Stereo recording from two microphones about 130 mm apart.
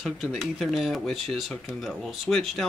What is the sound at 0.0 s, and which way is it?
Speech, centre (ahead or behind).